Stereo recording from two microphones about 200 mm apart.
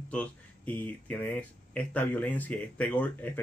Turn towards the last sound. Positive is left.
turn(degrees=10)  # may be behind; listen again after turning